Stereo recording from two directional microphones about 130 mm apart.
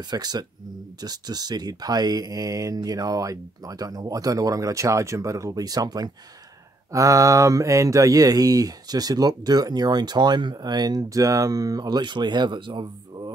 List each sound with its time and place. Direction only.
0.1 s speech: 30° right (ahead or behind)